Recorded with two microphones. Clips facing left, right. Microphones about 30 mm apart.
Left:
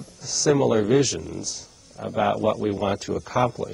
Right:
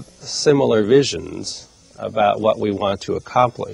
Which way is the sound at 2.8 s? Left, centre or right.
Right.